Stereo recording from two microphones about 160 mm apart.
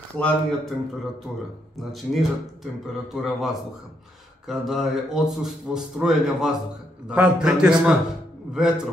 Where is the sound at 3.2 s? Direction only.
Centre (ahead or behind).